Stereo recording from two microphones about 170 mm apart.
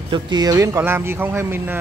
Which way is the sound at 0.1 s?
25° right (ahead or behind).